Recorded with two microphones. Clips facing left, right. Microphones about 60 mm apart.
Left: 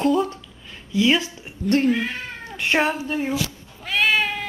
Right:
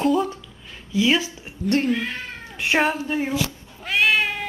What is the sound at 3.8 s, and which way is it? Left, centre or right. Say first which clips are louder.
Cat: right 1 dB; centre.